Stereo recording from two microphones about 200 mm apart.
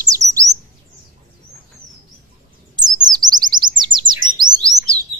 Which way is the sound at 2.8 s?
20° right (ahead or behind).